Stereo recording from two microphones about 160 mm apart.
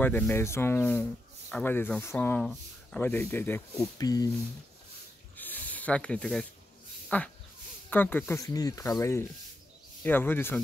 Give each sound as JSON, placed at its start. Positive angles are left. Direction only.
{"t": 0.0, "sound": "speech", "side_deg": 15}
{"t": 5.4, "sound": "snake", "side_deg": 10}
{"t": 7.1, "sound": "speech", "side_deg": 10}
{"t": 10.0, "sound": "speech", "side_deg": 10}